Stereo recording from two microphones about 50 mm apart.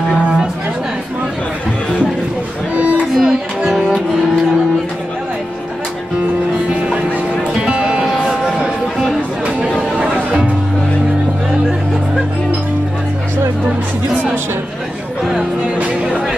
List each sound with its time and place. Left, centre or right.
2.7 s music: right
3.2 s music: centre
7.6 s music: centre
9.8 s chatter: right